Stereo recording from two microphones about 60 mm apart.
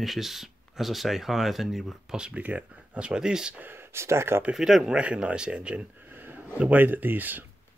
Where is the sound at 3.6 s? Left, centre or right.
Right.